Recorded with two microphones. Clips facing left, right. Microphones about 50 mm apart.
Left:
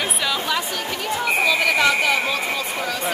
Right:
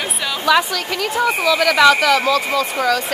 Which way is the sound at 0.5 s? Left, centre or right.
Right.